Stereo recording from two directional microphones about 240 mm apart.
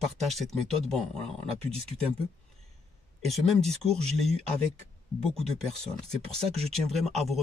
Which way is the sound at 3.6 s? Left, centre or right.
Right.